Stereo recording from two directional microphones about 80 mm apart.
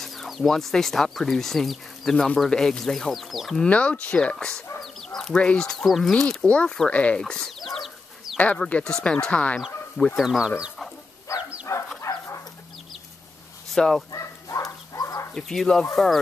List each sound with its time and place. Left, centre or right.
0.0 s speech: centre
3.6 s speech: centre
4.8 s chicken: centre
5.9 s speech: centre
6.2 s speech: centre
8.4 s speech: centre
10.1 s speech: centre
11.3 s dog: left
13.7 s speech: centre
15.0 s chicken: left
15.3 s speech: centre